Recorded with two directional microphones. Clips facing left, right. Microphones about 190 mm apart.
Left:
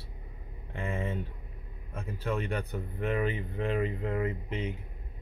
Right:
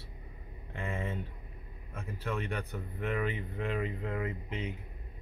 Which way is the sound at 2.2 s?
30° left (ahead or behind).